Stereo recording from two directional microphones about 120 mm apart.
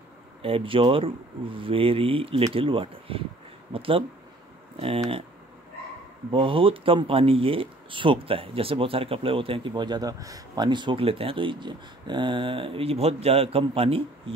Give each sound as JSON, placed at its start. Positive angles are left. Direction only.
{"t": 0.4, "sound": "speech", "side_deg": -50}
{"t": 6.3, "sound": "speech", "side_deg": -45}